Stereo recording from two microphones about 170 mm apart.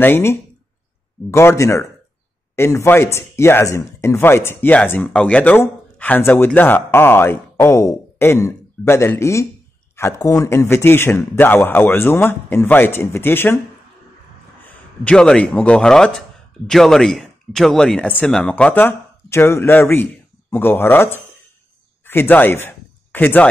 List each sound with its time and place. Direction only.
0.0 s a man's voice: 15° left (ahead or behind)
14.6 s speech: 10° left (ahead or behind)